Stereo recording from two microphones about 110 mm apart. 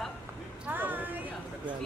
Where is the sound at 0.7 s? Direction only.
15° right (ahead or behind).